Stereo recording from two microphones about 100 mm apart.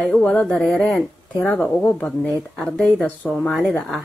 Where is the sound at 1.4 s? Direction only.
15° left (ahead or behind).